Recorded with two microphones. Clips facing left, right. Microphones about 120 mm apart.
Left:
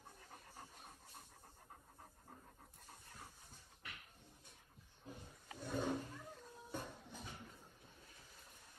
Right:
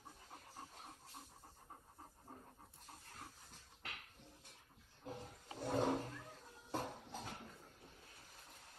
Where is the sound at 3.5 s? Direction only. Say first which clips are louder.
Right 3 dB; 75° right (ahead or behind).